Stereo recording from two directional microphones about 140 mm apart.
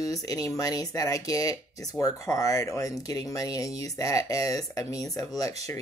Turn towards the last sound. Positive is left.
turn(degrees=25)  # may be behind; listen again after turning